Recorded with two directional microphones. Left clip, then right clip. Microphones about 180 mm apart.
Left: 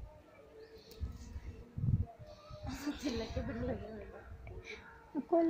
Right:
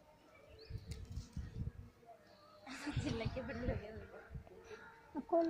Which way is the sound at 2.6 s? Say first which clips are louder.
Left 4 dB; 55° left (ahead or behind).